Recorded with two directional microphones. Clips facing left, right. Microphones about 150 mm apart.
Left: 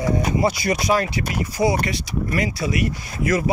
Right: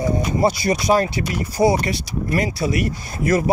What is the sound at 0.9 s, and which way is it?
Speech, 35° right (ahead or behind).